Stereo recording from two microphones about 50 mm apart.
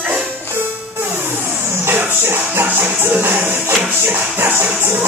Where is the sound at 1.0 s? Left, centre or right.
Right.